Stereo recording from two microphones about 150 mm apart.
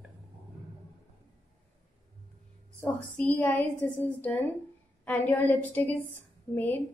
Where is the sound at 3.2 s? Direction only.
15° left (ahead or behind).